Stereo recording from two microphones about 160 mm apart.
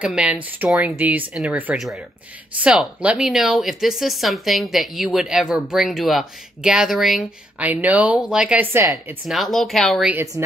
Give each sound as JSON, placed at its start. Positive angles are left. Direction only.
{"t": 0.0, "sound": "speech", "side_deg": -5}
{"t": 9.3, "sound": "speech", "side_deg": 0}
{"t": 10.4, "sound": "speech", "side_deg": -15}